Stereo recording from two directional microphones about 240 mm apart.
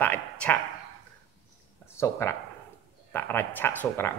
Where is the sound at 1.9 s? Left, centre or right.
Centre.